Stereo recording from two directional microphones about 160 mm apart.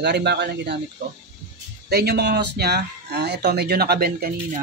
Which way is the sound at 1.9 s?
90° right.